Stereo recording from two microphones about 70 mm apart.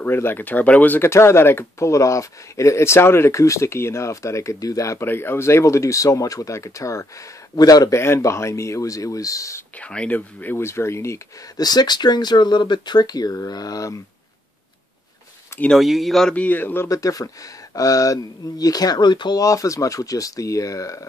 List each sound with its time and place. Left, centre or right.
0.0 s speech: left
1.1 s speech: left
5.0 s speech: left
7.5 s speech: left
7.9 s speech: left
9.8 s speech: centre
10.6 s speech: left
11.5 s speech: left
15.8 s speech: centre
16.3 s speech: left
16.9 s speech: left
19.4 s speech: left